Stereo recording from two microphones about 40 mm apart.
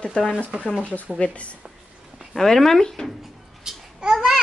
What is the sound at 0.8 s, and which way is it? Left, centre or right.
Speech, left.